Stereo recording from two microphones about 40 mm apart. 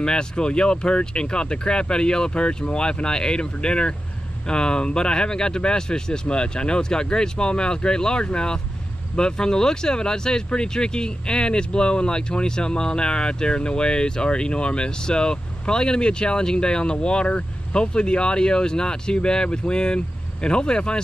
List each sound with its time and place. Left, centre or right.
0.0 s speech: left